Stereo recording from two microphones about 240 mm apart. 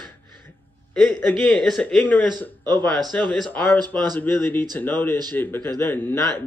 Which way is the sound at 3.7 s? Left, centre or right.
Centre.